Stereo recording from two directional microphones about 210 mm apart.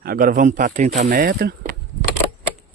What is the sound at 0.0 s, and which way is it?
Speech, 45° right (ahead or behind).